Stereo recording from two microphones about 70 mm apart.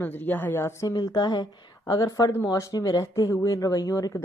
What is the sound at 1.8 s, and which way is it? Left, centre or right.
Speech, left.